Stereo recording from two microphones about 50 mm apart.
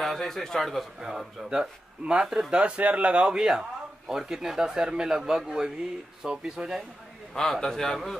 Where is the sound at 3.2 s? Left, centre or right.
Centre.